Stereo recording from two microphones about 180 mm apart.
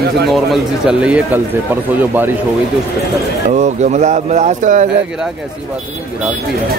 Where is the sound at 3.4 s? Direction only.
40° right (ahead or behind).